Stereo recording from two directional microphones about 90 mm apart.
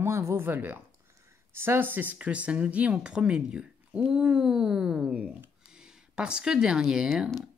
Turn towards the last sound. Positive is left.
turn(degrees=-5)  # may be behind; listen again after turning